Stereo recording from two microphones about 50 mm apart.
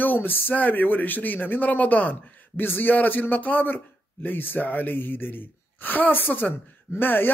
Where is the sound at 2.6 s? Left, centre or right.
Left.